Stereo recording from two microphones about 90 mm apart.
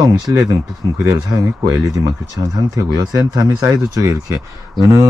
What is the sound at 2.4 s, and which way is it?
Speech, 40° right (ahead or behind).